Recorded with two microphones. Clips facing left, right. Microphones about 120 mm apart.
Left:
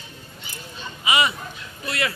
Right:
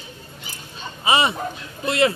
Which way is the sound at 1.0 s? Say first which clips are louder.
Right 3 dB; 30° right (ahead or behind).